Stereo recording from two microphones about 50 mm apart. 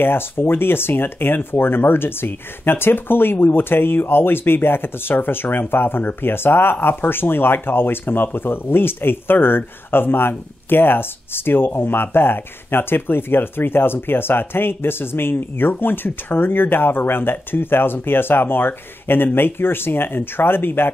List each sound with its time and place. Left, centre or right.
0.0 s speech: left